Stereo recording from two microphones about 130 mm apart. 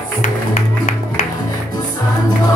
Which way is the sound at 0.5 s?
75° left (ahead or behind).